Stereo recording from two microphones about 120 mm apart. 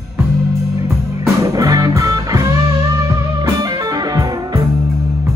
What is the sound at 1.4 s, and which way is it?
Music, 30° right (ahead or behind).